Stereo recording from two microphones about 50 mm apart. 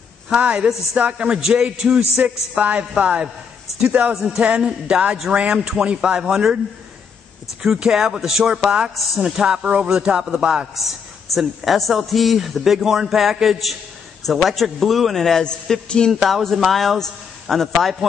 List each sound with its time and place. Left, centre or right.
0.3 s speech: centre
4.1 s a man's voice: centre
4.4 s a man's voice: right
7.6 s a man's voice: centre
11.3 s a man's voice: centre
15.7 s a sound: centre
16.1 s a man's voice: centre